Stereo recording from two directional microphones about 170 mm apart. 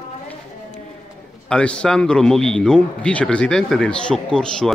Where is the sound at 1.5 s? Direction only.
5° left (ahead or behind).